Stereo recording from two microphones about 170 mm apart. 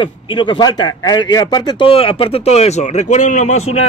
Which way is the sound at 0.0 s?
25° left (ahead or behind).